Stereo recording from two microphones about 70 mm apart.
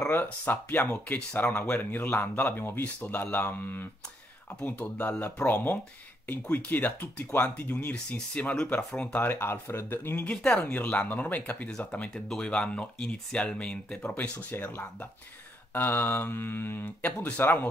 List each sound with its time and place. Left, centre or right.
0.1 s speech: left
10.3 s speech: centre
10.7 s speech: left
12.1 s speech: centre
12.4 s speech: centre
15.7 s mantra: left
17.0 s speech: left